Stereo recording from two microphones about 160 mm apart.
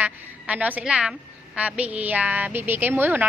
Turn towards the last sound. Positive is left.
turn(degrees=-10)  # may be behind; listen again after turning